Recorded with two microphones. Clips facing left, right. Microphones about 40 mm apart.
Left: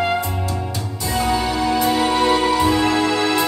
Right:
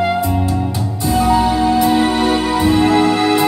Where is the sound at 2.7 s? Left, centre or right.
Right.